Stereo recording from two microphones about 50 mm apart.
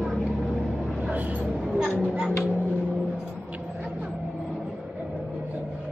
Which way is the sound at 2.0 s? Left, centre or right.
Right.